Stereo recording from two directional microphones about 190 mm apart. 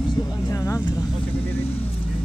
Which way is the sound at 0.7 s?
15° left (ahead or behind).